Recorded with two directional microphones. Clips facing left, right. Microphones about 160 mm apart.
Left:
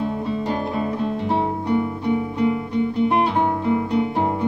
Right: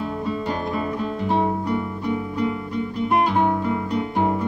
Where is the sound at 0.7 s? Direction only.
30° left (ahead or behind).